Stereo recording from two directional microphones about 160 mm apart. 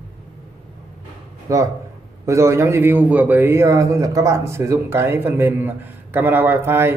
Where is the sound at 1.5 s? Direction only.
20° right (ahead or behind).